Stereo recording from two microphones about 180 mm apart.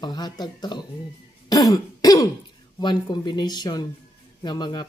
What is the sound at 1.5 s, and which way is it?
Throat clearing, 20° left (ahead or behind).